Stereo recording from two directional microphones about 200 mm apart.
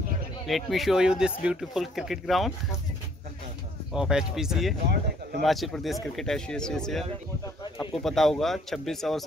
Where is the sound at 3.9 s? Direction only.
5° right (ahead or behind).